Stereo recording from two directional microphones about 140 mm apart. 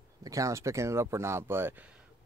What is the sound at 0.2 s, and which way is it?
Speech, 25° right (ahead or behind).